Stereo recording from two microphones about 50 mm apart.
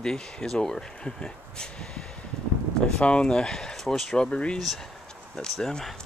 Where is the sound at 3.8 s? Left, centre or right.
Centre.